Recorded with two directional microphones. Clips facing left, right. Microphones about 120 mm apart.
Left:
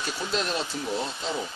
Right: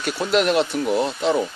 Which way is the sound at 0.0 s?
70° right (ahead or behind).